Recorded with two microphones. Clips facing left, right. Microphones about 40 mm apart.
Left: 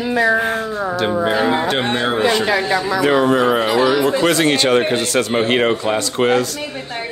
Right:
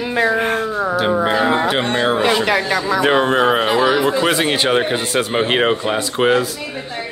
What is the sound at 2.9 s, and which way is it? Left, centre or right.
Speech, right.